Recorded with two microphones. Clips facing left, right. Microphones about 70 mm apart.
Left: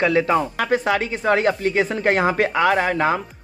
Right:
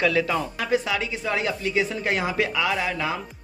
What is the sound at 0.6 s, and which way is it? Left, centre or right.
Speech, left.